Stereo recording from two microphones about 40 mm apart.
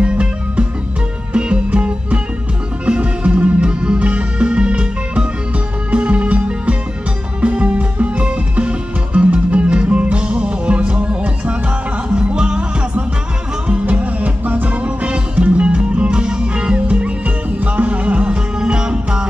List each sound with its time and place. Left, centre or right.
0.0 s music: right
12.2 s music: right
13.8 s music: right
18.6 s music: centre